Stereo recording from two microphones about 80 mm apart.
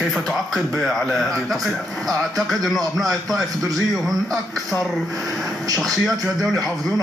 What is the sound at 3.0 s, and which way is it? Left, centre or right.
Speech, right.